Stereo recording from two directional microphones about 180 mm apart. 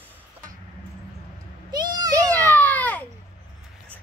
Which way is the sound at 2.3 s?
10° left (ahead or behind).